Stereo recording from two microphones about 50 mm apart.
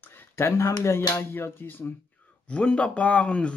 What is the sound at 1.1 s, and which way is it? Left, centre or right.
Speech, left.